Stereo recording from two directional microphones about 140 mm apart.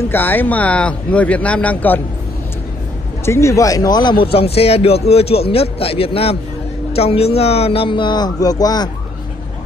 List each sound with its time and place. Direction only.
0.1 s speech: 15° left (ahead or behind)
3.3 s speech: 20° left (ahead or behind)